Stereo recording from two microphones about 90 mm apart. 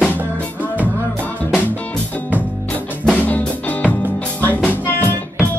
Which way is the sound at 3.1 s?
15° left (ahead or behind).